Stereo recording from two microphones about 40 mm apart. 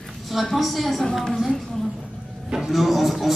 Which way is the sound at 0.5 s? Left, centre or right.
Centre.